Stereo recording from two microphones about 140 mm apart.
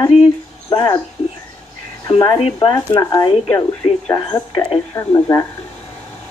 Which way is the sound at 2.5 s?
30° left (ahead or behind).